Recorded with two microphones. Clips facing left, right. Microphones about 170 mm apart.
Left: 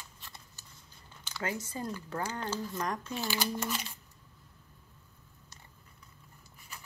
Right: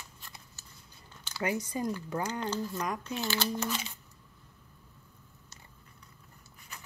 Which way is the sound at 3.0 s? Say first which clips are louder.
Right 1 dB; 5° left (ahead or behind).